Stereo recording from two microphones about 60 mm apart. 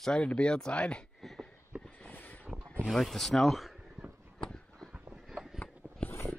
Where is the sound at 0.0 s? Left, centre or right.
Centre.